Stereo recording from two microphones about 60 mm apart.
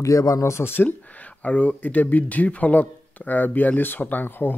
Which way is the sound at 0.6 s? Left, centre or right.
Left.